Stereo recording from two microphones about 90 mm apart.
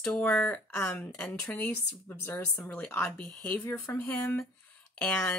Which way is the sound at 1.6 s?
25° left (ahead or behind).